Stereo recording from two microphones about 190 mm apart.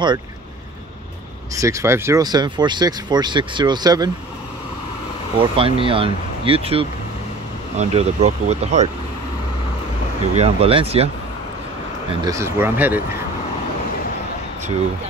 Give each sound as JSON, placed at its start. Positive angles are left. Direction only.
{"t": 1.5, "sound": "speech", "side_deg": -15}
{"t": 5.4, "sound": "speech", "side_deg": -30}
{"t": 10.3, "sound": "speech", "side_deg": -30}
{"t": 12.1, "sound": "speech", "side_deg": -20}